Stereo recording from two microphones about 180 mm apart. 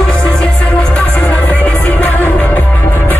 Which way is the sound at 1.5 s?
10° left (ahead or behind).